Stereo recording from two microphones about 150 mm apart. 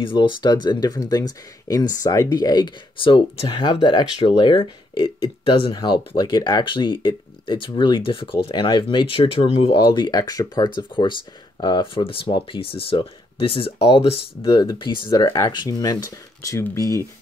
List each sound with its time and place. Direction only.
0.0 s speech: 35° left (ahead or behind)
15.2 s speech: 20° left (ahead or behind)